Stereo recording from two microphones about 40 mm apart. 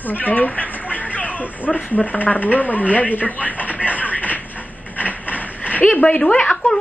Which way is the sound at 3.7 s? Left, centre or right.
Right.